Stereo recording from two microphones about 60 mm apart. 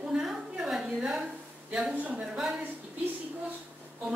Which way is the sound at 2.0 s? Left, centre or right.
Right.